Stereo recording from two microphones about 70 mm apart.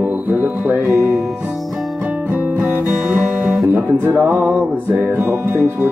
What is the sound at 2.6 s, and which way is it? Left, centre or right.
Music, right.